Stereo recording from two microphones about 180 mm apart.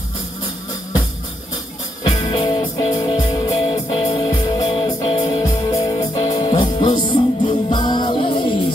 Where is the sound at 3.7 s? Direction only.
25° left (ahead or behind).